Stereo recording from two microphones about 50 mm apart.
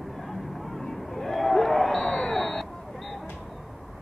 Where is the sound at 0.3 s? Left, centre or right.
Centre.